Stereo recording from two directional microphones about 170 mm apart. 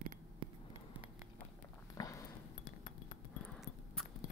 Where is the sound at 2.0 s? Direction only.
20° left (ahead or behind).